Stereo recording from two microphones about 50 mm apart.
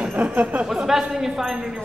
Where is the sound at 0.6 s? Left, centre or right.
Centre.